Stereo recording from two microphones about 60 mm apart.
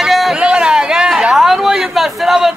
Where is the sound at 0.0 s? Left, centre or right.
Centre.